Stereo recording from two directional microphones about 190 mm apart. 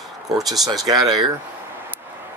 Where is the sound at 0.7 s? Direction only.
20° right (ahead or behind).